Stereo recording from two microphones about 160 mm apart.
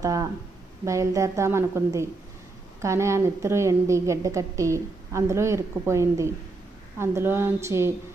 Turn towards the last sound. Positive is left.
turn(degrees=-15)  # may be behind; listen again after turning